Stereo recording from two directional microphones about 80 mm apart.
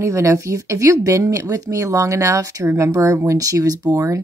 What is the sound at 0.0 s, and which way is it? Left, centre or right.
A woman's voice, right.